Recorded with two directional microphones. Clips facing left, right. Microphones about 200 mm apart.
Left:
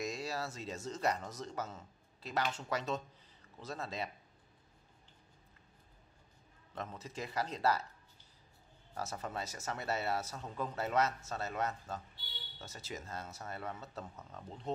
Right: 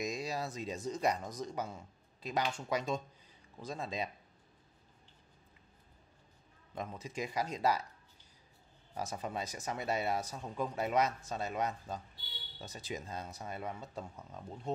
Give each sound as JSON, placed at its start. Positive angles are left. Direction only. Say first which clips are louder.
{"t": 0.0, "sound": "speech", "louder": "right 2 dB", "side_deg": -15}
{"t": 6.7, "sound": "speech", "louder": "right 2 dB", "side_deg": -15}
{"t": 8.9, "sound": "speech", "louder": "right 2 dB", "side_deg": -15}